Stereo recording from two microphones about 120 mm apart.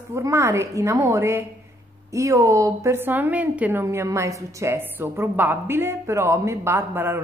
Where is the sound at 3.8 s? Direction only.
25° right (ahead or behind).